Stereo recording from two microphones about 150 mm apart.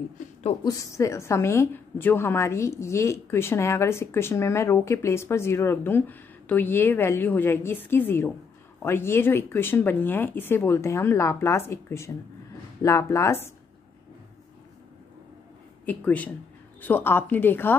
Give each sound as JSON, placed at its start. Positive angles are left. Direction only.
{"t": 0.7, "sound": "a woman's voice", "side_deg": 20}
{"t": 15.8, "sound": "a woman's voice", "side_deg": 10}